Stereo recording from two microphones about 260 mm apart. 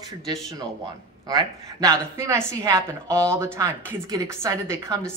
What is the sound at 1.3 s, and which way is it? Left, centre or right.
A woman's voice, centre.